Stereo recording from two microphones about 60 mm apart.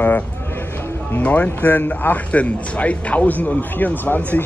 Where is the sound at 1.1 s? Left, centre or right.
Left.